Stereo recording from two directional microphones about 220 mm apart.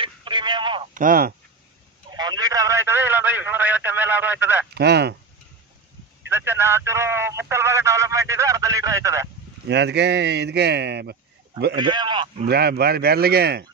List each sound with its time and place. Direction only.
0.0 s telephone: 20° right (ahead or behind)
0.9 s speech: 40° right (ahead or behind)
2.0 s speech: 20° right (ahead or behind)
4.7 s speech: 50° right (ahead or behind)
6.2 s speech: 10° right (ahead or behind)
9.7 s speech: 50° right (ahead or behind)
11.7 s speech: 20° right (ahead or behind)
12.4 s speech: 50° right (ahead or behind)